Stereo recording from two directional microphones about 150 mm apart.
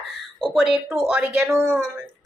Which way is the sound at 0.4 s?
Centre (ahead or behind).